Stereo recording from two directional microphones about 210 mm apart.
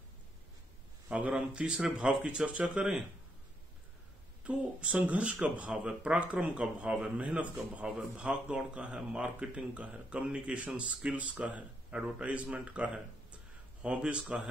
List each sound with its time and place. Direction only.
1.0 s speech: 5° right (ahead or behind)
4.5 s speech: 5° right (ahead or behind)